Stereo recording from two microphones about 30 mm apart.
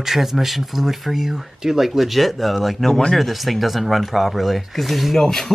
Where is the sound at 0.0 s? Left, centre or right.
Centre.